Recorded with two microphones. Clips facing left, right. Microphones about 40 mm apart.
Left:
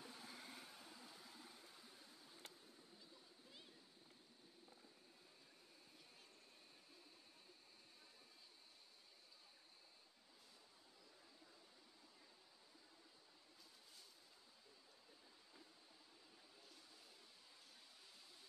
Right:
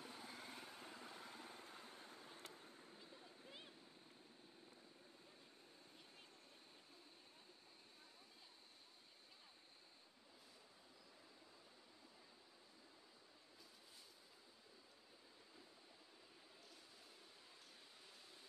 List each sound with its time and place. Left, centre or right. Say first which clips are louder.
0.0 s vehicle: right 2 dB; right